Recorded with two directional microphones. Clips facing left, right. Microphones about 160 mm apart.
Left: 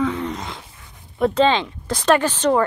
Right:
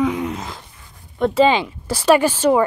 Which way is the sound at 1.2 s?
5° right (ahead or behind).